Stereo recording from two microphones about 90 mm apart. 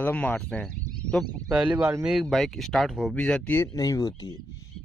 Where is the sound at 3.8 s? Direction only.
40° left (ahead or behind).